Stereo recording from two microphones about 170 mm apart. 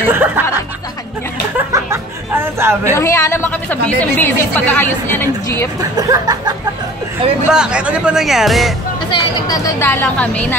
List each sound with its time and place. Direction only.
0.0 s music: 10° right (ahead or behind)
1.7 s a sound: 15° right (ahead or behind)
3.0 s a woman's voice: 15° left (ahead or behind)
5.9 s a sound: 20° right (ahead or behind)
7.5 s speech: 5° right (ahead or behind)
9.1 s speech: 20° left (ahead or behind)
9.8 s a woman's voice: 10° left (ahead or behind)